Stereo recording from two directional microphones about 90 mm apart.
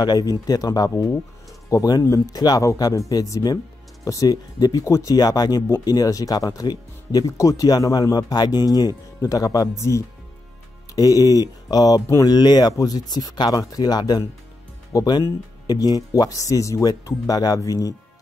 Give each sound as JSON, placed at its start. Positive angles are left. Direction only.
{"t": 0.0, "sound": "speech", "side_deg": 45}